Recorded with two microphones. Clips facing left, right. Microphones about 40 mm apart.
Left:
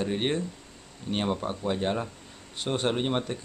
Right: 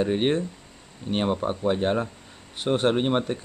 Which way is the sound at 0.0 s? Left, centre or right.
Centre.